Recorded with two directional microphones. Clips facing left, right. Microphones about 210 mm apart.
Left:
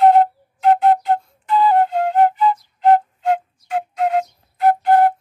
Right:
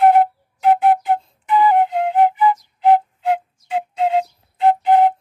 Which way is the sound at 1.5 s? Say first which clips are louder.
Right 1 dB; 15° right (ahead or behind).